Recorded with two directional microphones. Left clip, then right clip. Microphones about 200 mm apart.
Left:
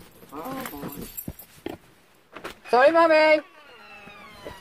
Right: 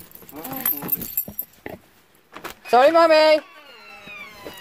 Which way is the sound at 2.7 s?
20° right (ahead or behind).